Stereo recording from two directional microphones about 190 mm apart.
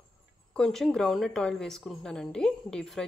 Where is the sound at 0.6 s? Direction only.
Centre (ahead or behind).